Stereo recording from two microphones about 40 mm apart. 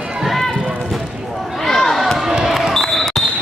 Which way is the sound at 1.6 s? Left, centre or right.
Centre.